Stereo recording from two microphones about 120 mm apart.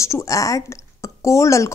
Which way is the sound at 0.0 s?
25° left (ahead or behind).